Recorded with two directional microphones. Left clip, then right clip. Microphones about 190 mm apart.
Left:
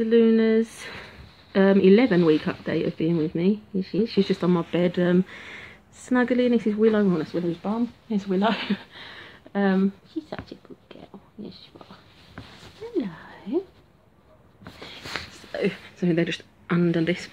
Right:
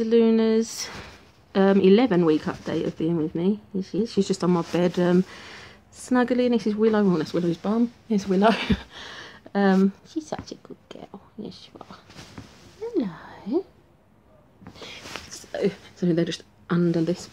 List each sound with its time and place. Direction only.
0.0 s speech: centre (ahead or behind)
7.6 s speech: 40° right (ahead or behind)
12.9 s a sound: 35° right (ahead or behind)
15.5 s speech: 15° right (ahead or behind)